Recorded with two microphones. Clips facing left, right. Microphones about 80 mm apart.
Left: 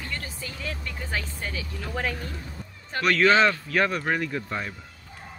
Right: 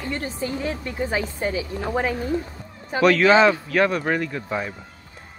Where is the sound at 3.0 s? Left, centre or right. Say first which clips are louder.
Right 5 dB; centre.